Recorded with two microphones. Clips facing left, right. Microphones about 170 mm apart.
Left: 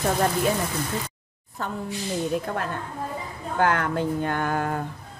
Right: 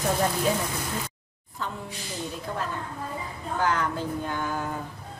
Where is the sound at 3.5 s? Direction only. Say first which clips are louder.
Left 4 dB; 60° left (ahead or behind).